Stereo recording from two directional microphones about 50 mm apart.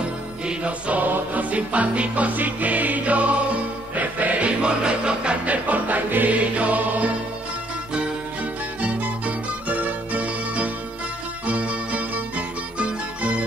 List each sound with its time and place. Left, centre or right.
0.0 s music: right
8.8 s music: right